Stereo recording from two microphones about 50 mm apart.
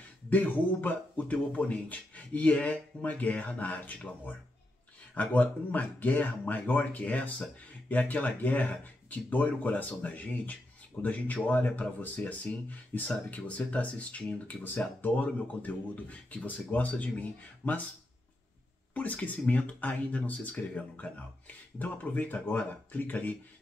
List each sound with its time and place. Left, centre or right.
0.3 s speech: left
14.6 s speech: left
18.9 s speech: left